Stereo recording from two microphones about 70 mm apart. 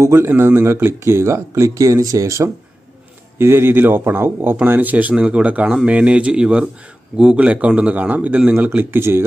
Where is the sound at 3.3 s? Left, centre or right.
Right.